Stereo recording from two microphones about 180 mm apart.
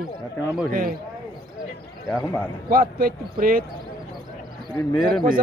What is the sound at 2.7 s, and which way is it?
Speech, 55° right (ahead or behind).